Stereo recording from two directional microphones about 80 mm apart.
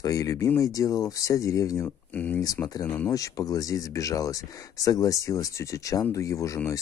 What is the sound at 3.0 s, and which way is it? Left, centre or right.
Speech, left.